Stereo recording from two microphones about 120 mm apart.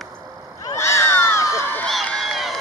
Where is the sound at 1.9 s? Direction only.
Centre (ahead or behind).